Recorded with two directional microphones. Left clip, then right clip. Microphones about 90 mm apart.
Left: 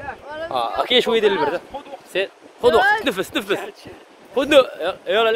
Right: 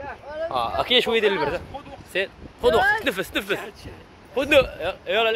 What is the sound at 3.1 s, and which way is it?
Speech, 5° left (ahead or behind).